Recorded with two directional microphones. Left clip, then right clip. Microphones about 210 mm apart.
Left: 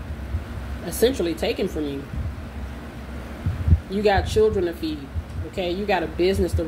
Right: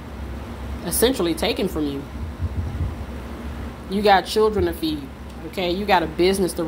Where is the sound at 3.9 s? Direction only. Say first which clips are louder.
Right 4 dB; 20° right (ahead or behind).